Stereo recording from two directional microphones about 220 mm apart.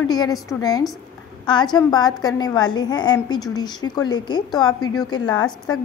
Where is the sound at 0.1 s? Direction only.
15° left (ahead or behind).